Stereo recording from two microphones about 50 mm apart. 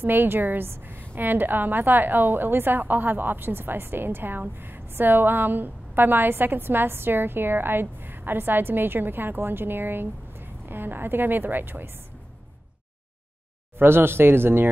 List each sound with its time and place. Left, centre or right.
0.0 s a woman's voice: right
13.7 s a woman's voice: right